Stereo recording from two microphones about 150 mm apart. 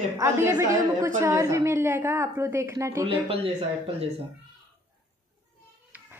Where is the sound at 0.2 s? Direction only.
20° right (ahead or behind).